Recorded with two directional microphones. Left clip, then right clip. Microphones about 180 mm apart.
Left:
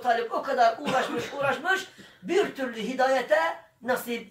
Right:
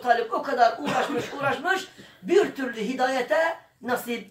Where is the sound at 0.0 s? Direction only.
15° left (ahead or behind).